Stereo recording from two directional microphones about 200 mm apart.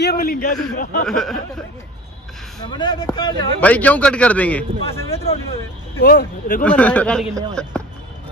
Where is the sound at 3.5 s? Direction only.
5° left (ahead or behind).